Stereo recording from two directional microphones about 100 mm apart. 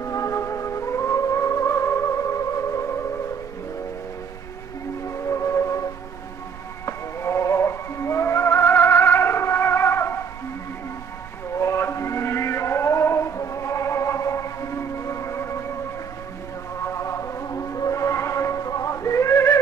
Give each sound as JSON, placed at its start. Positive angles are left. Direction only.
{"t": 0.0, "sound": "music", "side_deg": 30}
{"t": 5.1, "sound": "music", "side_deg": 30}
{"t": 6.9, "sound": "music", "side_deg": 30}
{"t": 11.5, "sound": "music", "side_deg": 30}
{"t": 16.8, "sound": "music", "side_deg": 30}